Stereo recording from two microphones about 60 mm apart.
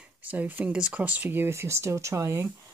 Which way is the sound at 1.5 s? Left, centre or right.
Right.